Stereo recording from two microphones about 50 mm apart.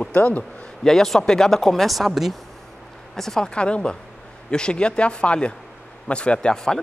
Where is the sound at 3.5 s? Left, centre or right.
Left.